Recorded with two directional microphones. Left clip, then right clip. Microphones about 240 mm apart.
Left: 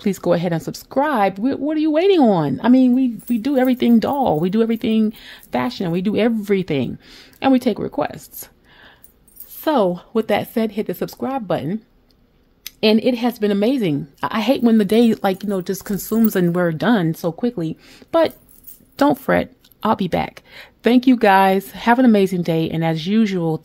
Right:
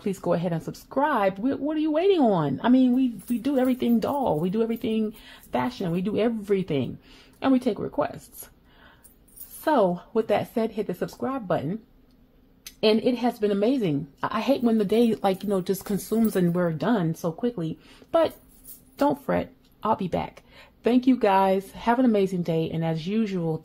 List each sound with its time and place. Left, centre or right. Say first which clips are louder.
0.0 s speech: left 7 dB; left
9.7 s speech: left 4 dB; left